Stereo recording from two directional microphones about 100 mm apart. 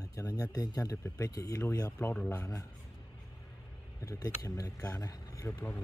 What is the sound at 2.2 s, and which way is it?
Speech, 35° left (ahead or behind).